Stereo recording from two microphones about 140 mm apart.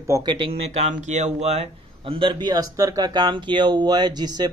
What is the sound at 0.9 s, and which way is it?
A man's voice, 55° right (ahead or behind).